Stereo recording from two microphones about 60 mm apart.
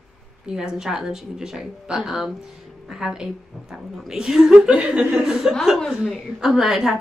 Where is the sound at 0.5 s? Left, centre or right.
Centre.